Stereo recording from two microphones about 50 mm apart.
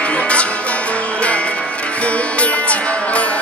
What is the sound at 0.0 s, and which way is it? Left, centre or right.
Music, left.